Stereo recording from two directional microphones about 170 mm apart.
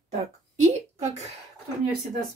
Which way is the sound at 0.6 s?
40° right (ahead or behind).